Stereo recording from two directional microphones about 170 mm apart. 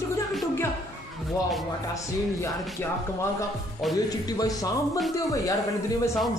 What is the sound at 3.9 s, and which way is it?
A man's voice, 20° left (ahead or behind).